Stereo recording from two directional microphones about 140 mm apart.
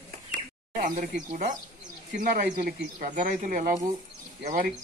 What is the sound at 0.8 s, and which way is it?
Speech, 70° right (ahead or behind).